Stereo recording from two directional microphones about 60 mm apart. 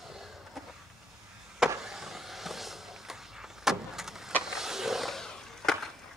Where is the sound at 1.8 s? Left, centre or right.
Centre.